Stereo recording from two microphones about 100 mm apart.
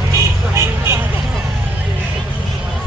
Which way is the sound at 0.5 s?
25° right (ahead or behind).